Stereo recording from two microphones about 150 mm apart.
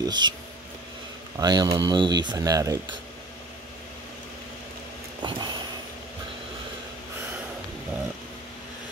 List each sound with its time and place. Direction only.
0.0 s speech: 30° right (ahead or behind)
1.4 s speech: 30° right (ahead or behind)
5.2 s a sound: 30° right (ahead or behind)